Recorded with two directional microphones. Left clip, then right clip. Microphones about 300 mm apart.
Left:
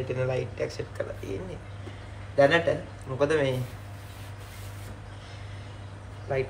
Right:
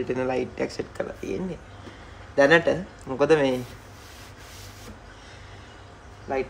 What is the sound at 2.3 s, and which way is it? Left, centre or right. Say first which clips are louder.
Speech: right 3 dB; right.